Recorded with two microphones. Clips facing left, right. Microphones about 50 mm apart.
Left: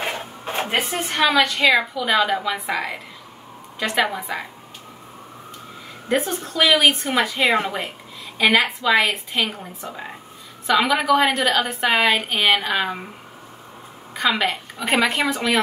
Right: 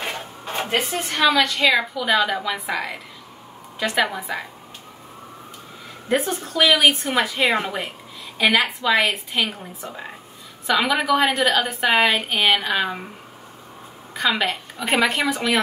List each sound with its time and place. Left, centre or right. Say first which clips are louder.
0.0 s a sound: left 2 dB; centre
1.1 s a woman's voice: even; left
1.4 s a woman's voice: left 1 dB; centre
1.7 s a woman's voice: left 1 dB; centre
6.0 s a woman's voice: even; centre
14.1 s a woman's voice: left 1 dB; centre